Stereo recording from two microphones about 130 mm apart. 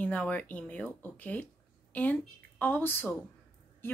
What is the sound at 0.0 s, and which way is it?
Speech, 10° left (ahead or behind).